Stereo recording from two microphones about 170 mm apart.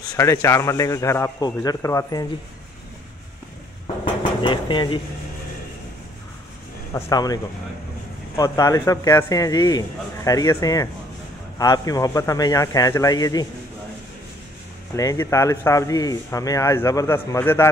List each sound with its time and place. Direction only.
0.1 s speech: 15° left (ahead or behind)
3.8 s dishes: 30° left (ahead or behind)
7.1 s speech: 20° left (ahead or behind)
8.4 s speech: 20° left (ahead or behind)
15.0 s speech: 15° left (ahead or behind)